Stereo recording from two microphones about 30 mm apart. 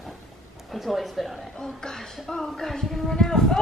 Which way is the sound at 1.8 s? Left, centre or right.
Centre.